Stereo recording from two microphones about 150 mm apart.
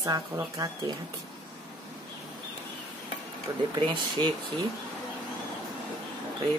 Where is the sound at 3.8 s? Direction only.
35° right (ahead or behind).